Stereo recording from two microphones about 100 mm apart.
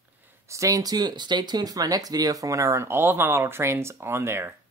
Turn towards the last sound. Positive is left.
turn(degrees=-25)  # may be behind; listen again after turning